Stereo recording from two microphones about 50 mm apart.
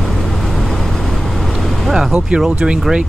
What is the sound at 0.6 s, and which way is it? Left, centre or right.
Vehicle, centre.